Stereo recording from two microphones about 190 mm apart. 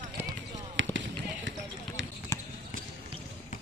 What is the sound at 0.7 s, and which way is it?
Run, 75° right (ahead or behind).